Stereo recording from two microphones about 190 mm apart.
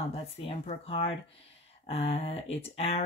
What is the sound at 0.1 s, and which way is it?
Speech, 30° left (ahead or behind).